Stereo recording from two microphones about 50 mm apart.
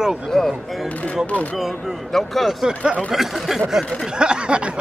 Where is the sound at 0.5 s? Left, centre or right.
Centre.